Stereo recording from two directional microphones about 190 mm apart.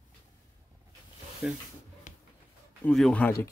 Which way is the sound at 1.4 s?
5° right (ahead or behind).